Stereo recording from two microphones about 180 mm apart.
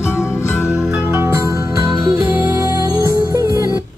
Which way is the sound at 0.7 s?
10° right (ahead or behind).